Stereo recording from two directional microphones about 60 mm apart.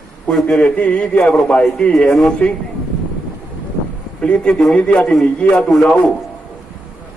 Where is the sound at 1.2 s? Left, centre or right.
Centre.